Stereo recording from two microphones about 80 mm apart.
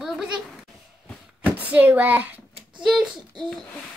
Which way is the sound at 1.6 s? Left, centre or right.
Right.